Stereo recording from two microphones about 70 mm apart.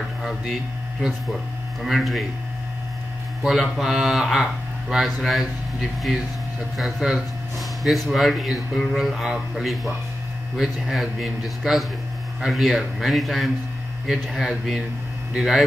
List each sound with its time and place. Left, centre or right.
0.0 s speech: centre
3.7 s speech: centre